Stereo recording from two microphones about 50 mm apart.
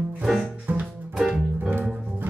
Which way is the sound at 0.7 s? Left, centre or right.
Right.